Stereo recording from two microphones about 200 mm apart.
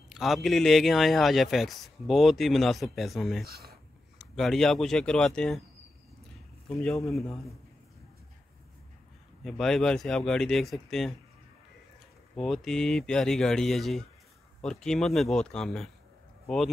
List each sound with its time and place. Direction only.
0.1 s speech: centre (ahead or behind)
3.4 s speech: 50° right (ahead or behind)
4.4 s speech: centre (ahead or behind)
6.8 s speech: centre (ahead or behind)
9.4 s speech: centre (ahead or behind)
12.4 s speech: centre (ahead or behind)